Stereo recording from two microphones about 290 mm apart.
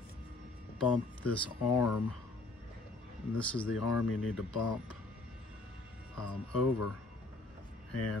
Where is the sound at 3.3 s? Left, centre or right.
Centre.